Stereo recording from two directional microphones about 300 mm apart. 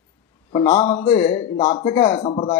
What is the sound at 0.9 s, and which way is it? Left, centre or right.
Speech, centre.